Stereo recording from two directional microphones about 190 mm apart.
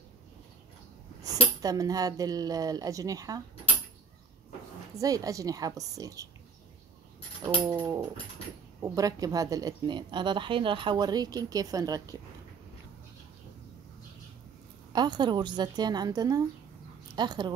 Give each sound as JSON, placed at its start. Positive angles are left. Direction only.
{"t": 1.2, "sound": "a woman's voice", "side_deg": -20}
{"t": 4.9, "sound": "a woman's voice", "side_deg": -20}
{"t": 7.4, "sound": "a woman's voice", "side_deg": -15}
{"t": 14.9, "sound": "a woman's voice", "side_deg": -20}